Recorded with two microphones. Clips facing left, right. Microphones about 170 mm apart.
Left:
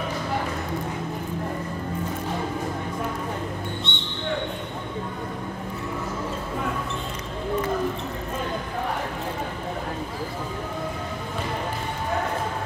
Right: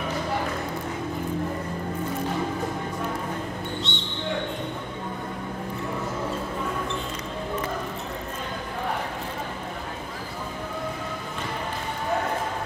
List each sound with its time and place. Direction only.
3.9 s basketball bounce: 55° left (ahead or behind)